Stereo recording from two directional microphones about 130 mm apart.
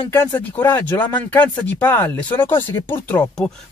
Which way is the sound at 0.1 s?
15° left (ahead or behind).